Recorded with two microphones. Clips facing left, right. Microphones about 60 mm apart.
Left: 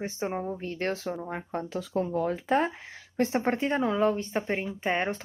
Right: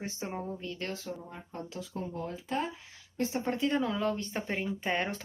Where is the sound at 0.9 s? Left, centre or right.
Left.